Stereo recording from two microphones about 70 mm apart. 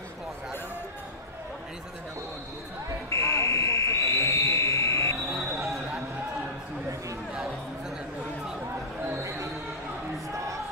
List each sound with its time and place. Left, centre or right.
3.1 s buzzer: left
5.6 s a sound: centre
9.1 s basketball bounce: right